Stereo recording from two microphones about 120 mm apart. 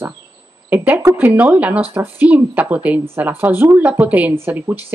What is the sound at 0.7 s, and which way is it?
A woman's voice, 15° right (ahead or behind).